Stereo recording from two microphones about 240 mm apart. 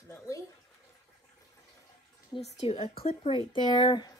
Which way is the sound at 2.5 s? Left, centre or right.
Left.